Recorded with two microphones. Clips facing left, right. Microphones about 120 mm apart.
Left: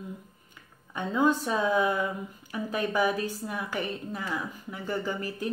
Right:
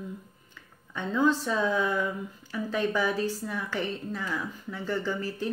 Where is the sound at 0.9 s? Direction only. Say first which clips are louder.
Even; 15° left (ahead or behind).